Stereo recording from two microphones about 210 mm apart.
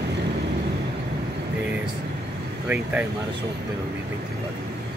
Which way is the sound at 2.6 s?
5° right (ahead or behind).